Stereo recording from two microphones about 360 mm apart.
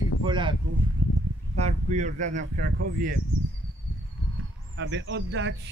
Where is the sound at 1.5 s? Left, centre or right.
Centre.